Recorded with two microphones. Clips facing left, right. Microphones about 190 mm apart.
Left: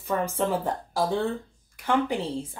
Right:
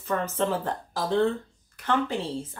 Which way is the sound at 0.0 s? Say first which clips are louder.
Left 1 dB; 10° left (ahead or behind).